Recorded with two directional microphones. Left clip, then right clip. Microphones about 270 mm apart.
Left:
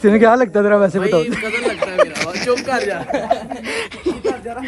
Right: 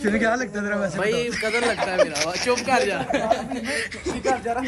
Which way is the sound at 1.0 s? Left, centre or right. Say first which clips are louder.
Left 7 dB; centre.